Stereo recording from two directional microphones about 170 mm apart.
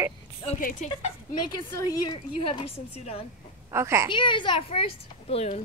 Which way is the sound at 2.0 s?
25° left (ahead or behind).